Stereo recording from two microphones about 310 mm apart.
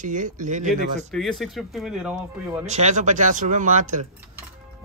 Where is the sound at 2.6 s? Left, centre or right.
Right.